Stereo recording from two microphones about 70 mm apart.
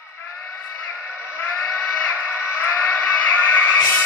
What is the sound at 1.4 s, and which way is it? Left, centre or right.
Music, left.